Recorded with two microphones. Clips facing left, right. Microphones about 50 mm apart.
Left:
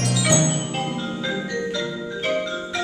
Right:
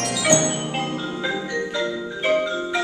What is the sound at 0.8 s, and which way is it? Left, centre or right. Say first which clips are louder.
Music: right 1 dB; centre.